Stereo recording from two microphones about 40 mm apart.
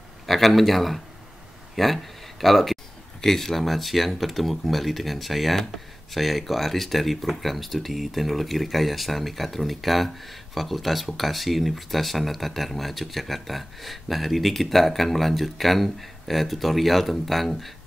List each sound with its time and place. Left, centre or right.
0.3 s speech: centre